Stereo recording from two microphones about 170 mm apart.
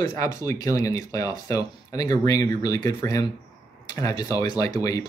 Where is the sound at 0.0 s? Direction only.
20° left (ahead or behind).